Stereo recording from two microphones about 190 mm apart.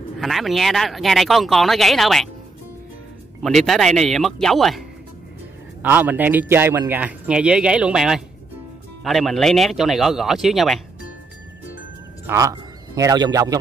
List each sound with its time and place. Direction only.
0.2 s speech: centre (ahead or behind)
3.4 s speech: centre (ahead or behind)
12.3 s a man's voice: 15° right (ahead or behind)